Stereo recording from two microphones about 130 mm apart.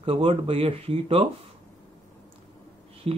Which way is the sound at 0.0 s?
45° right (ahead or behind).